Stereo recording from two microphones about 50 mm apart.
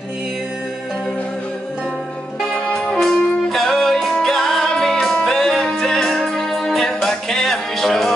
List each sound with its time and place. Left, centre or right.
2.7 s music: centre